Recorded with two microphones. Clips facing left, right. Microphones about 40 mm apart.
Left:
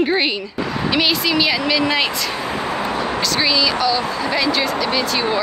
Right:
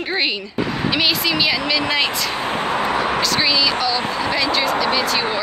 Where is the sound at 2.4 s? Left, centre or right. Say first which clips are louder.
Right 4 dB; right.